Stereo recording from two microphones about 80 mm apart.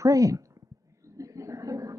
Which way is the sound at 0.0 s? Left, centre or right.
Right.